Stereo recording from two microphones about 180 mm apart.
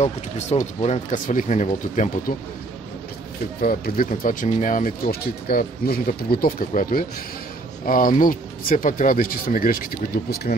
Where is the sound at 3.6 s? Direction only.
55° left (ahead or behind).